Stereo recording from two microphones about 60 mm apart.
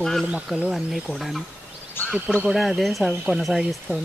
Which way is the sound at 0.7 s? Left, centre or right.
Centre.